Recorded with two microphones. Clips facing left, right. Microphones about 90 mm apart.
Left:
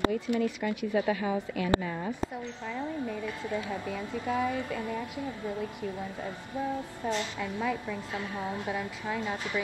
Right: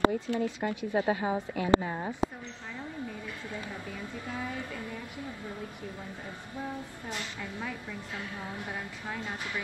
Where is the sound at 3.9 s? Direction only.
90° left.